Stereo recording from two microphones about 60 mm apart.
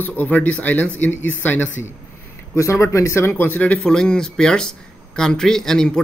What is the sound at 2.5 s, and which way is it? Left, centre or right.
Speech, left.